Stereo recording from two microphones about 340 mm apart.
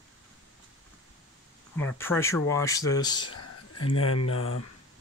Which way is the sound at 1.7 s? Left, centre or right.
Centre.